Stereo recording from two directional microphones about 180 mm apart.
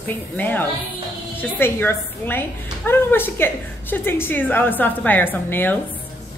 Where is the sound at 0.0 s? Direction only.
10° left (ahead or behind).